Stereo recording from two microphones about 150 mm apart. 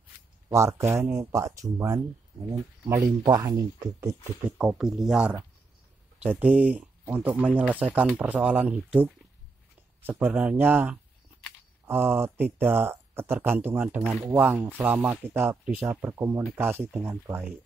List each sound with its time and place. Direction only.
0.5 s speech: 20° right (ahead or behind)
4.5 s speech: 10° right (ahead or behind)